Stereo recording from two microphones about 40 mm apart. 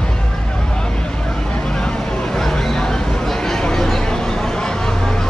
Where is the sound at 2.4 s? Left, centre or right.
Centre.